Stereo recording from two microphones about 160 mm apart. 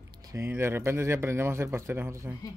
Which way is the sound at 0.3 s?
15° right (ahead or behind).